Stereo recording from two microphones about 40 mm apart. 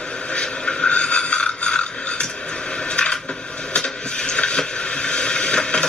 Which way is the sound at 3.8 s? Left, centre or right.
Left.